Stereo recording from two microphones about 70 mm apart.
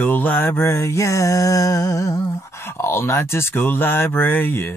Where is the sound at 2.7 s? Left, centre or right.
Left.